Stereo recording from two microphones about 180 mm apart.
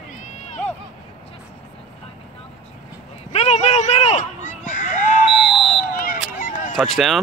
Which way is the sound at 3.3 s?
40° left (ahead or behind).